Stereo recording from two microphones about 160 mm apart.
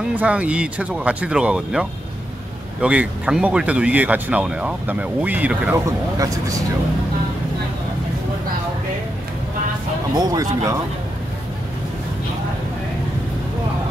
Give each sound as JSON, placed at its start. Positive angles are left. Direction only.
{"t": 0.1, "sound": "speech", "side_deg": -10}
{"t": 5.9, "sound": "speech", "side_deg": -20}
{"t": 10.1, "sound": "speech", "side_deg": -25}